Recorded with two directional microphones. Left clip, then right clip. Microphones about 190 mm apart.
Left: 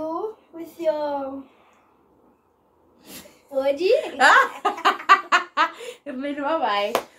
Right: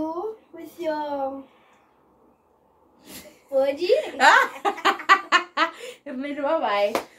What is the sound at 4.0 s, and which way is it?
Giggle, centre (ahead or behind).